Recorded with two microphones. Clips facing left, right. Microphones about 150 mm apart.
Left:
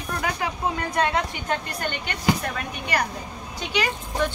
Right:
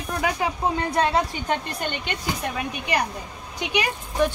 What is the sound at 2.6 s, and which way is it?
Speech, 20° right (ahead or behind).